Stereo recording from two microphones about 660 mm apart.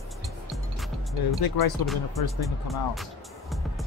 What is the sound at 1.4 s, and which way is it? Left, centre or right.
Speech, left.